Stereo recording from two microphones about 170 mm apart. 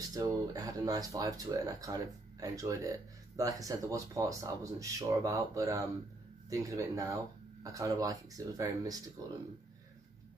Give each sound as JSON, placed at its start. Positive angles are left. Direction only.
{"t": 0.1, "sound": "speech", "side_deg": -20}